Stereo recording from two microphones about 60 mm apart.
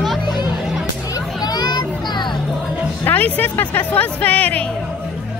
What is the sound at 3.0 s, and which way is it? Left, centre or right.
Speech, left.